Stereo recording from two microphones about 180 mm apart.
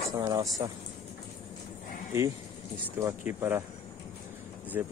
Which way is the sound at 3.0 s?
10° right (ahead or behind).